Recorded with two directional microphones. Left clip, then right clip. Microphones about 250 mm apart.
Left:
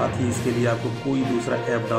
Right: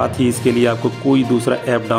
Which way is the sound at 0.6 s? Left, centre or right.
Right.